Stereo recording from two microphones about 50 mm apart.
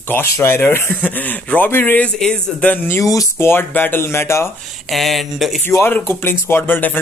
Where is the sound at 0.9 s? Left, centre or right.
Left.